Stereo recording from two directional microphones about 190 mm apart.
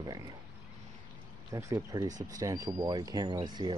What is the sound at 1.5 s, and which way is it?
Speech, 20° right (ahead or behind).